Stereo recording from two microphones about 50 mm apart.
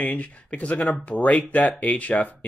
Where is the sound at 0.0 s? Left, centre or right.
Left.